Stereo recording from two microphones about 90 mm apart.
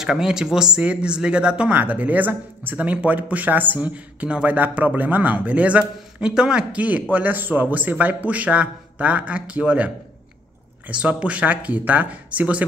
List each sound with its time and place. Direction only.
0.0 s speech: 5° right (ahead or behind)